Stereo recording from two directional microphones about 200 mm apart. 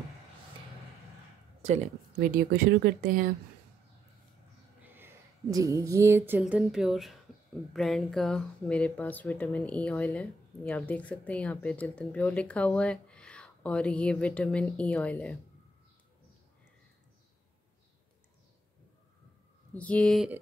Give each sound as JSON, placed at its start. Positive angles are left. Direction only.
{"t": 1.6, "sound": "speech", "side_deg": -35}
{"t": 4.8, "sound": "speech", "side_deg": -10}
{"t": 19.7, "sound": "speech", "side_deg": 5}